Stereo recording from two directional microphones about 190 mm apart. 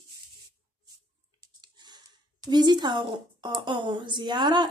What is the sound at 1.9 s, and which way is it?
Speech, 20° right (ahead or behind).